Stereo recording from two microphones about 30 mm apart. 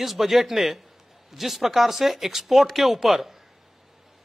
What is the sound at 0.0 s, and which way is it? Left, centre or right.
Speech, centre.